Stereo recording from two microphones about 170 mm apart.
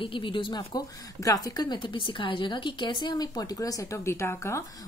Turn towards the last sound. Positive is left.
turn(degrees=15)  # may be behind; listen again after turning